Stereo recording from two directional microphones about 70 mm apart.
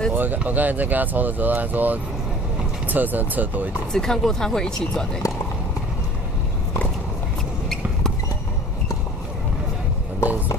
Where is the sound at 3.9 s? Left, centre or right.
Centre.